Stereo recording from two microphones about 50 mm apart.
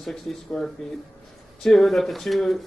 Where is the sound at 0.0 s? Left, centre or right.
Centre.